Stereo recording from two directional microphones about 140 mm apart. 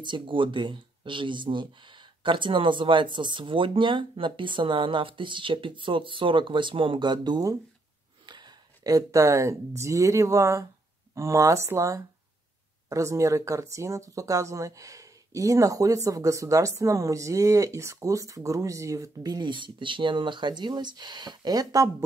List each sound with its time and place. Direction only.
0.0 s speech: 35° right (ahead or behind)